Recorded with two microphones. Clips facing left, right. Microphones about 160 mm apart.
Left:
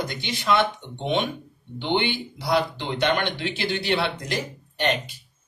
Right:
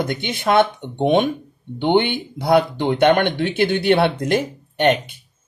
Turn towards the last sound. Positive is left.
turn(degrees=-55)  # may be behind; listen again after turning